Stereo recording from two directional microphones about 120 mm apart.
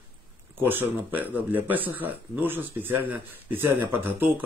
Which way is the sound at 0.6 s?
15° right (ahead or behind).